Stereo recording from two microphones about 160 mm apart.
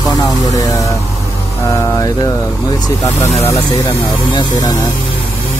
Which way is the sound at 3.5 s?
25° left (ahead or behind).